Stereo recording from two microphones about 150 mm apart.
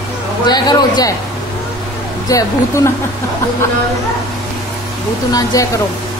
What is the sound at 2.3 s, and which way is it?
Speech, 20° left (ahead or behind).